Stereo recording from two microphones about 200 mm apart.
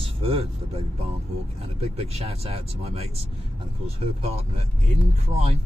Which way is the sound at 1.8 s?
30° right (ahead or behind).